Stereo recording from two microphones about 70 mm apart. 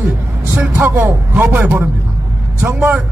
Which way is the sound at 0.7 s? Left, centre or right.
Right.